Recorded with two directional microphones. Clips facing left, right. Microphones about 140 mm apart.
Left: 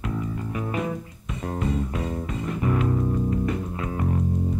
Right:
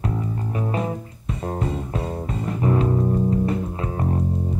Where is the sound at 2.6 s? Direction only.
30° right (ahead or behind).